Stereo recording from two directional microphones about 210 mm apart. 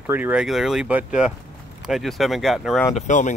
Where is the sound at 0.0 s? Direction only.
10° right (ahead or behind).